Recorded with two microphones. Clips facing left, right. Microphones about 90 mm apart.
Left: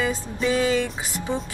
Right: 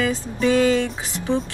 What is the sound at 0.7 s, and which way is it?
Speech, 15° left (ahead or behind).